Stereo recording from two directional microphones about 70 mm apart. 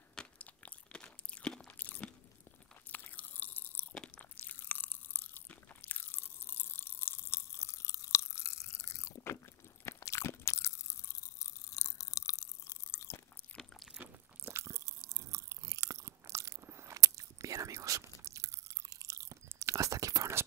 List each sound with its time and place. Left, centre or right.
0.2 s crunch: centre
1.8 s crunch: left
2.9 s chewing: left
4.4 s crunch: left
13.5 s biting: left
14.0 s crunch: right
14.4 s chewing: right
19.5 s whispering: right